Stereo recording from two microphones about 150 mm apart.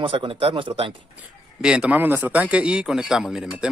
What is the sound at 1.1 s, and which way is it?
A man's voice, 5° right (ahead or behind).